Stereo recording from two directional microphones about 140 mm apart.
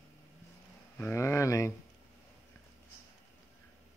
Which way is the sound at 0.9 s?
15° left (ahead or behind).